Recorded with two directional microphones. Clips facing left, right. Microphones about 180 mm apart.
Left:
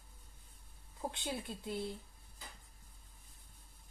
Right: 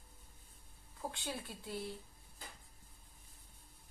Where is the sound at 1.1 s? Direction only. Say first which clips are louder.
Left 3 dB; 20° left (ahead or behind).